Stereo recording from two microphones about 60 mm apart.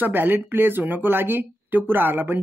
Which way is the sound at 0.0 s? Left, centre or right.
Right.